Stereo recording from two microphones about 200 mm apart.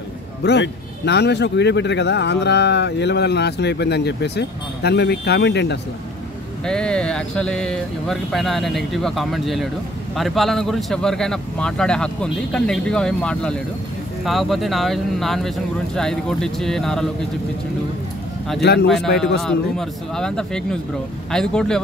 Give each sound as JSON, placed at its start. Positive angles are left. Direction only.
{"t": 0.4, "sound": "a man's voice", "side_deg": 60}
{"t": 6.6, "sound": "speech", "side_deg": 5}
{"t": 18.6, "sound": "a man's voice", "side_deg": 55}
{"t": 18.9, "sound": "speech", "side_deg": 0}